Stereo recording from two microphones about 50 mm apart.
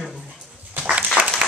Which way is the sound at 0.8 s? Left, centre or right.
Centre.